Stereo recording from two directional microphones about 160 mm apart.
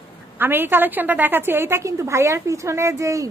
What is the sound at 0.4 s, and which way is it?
A woman's voice, 10° right (ahead or behind).